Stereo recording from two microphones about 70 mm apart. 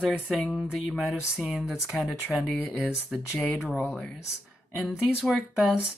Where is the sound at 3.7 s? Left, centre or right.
Left.